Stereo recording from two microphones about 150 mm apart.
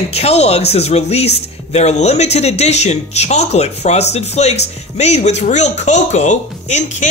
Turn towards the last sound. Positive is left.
turn(degrees=50)  # may be behind; listen again after turning